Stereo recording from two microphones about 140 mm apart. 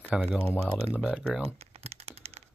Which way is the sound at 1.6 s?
45° right (ahead or behind).